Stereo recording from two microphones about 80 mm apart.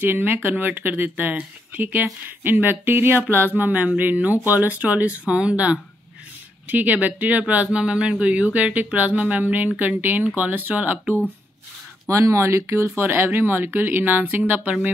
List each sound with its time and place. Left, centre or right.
0.0 s speech: right
12.1 s speech: right; by 14.9 s centre